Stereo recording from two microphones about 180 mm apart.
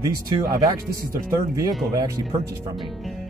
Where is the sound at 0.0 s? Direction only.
20° right (ahead or behind).